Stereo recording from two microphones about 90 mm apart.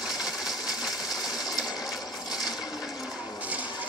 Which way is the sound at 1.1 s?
45° left (ahead or behind).